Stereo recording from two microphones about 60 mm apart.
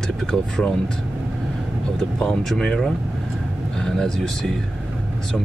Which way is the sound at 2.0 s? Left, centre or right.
Centre.